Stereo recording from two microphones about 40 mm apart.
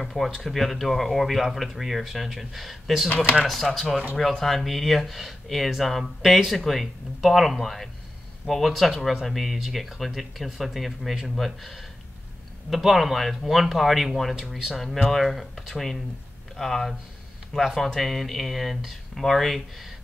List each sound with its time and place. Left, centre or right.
0.0 s speech: centre
3.1 s speech: left
3.4 s speech: centre
17.9 s speech: centre